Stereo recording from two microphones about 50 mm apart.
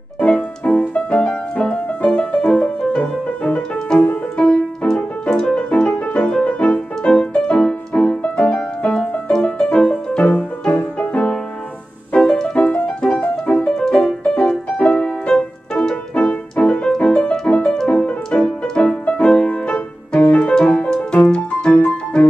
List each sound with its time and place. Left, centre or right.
0.3 s music: centre
12.1 s music: centre